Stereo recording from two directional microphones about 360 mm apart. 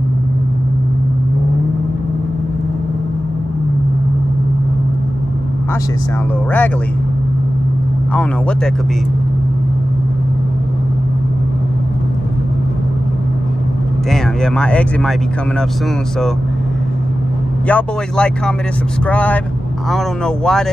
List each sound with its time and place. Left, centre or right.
8.1 s speech: centre
14.1 s speech: centre
17.6 s speech: centre